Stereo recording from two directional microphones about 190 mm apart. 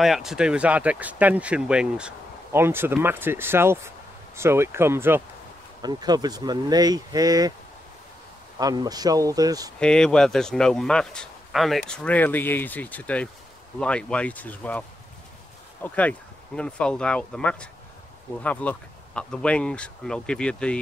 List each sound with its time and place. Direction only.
0.0 s speech: centre (ahead or behind); by 7.5 s 20° right (ahead or behind)
8.5 s speech: 20° right (ahead or behind)
9.8 s speech: 5° left (ahead or behind)